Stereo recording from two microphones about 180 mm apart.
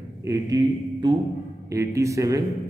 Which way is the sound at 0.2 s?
20° right (ahead or behind).